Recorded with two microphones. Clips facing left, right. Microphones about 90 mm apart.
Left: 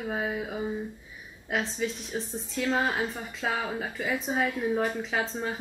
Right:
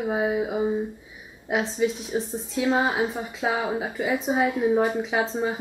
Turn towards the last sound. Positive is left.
turn(degrees=-15)  # may be behind; listen again after turning